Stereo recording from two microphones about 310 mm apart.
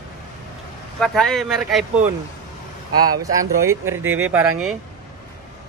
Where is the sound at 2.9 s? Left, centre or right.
Right.